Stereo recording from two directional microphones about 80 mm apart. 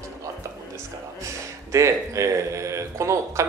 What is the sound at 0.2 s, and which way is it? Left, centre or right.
Speech, right.